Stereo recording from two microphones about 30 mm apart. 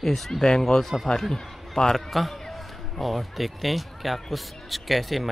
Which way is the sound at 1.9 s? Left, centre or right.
Centre.